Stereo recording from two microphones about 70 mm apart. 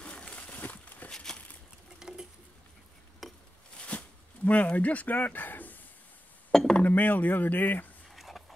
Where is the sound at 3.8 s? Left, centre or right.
Centre.